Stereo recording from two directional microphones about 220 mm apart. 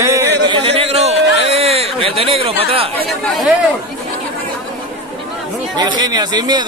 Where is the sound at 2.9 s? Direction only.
5° left (ahead or behind).